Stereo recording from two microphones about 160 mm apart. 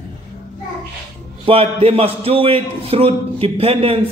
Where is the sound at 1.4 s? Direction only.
35° right (ahead or behind).